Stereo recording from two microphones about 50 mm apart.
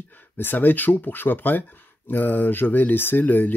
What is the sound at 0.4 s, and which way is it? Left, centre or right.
Speech, left.